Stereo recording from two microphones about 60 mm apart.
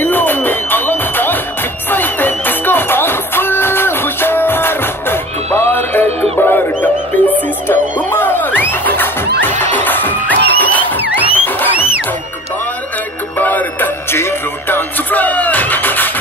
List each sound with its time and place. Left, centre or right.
0.0 s music: left
13.4 s music: left
14.1 s music: left